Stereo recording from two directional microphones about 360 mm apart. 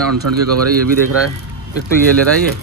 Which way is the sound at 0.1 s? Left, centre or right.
Right.